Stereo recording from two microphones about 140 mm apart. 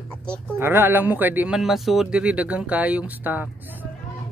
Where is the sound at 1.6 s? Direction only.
Centre (ahead or behind).